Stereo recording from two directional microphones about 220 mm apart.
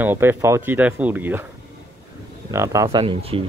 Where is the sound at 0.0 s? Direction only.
10° right (ahead or behind).